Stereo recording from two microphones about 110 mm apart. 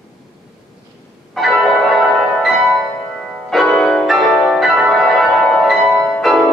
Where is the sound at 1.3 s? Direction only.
5° left (ahead or behind).